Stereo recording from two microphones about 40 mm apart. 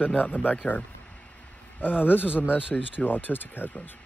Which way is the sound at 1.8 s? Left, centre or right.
Left.